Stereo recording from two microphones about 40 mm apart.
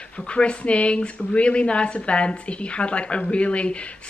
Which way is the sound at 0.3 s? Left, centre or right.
Left.